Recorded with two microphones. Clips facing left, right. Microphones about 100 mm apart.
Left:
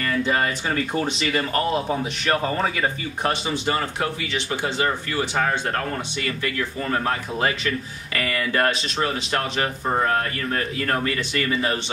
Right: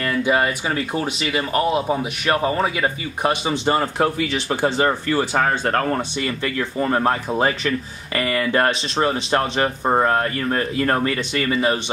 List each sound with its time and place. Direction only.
0.0 s speech: 10° right (ahead or behind); by 6.0 s 50° right (ahead or behind)
6.2 s speech: 30° right (ahead or behind)